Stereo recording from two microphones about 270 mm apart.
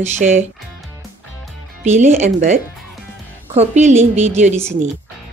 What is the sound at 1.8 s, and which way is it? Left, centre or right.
A woman's voice, right.